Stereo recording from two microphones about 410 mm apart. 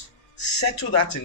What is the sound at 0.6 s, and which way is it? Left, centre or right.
Speech, left.